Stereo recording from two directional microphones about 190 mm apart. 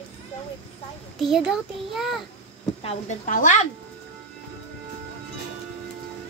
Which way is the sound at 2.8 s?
35° left (ahead or behind).